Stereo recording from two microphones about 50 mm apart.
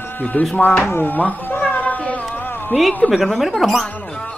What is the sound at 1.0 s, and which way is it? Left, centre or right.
Cat, left.